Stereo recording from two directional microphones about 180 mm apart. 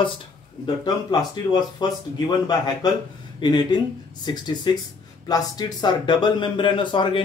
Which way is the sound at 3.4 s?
25° left (ahead or behind).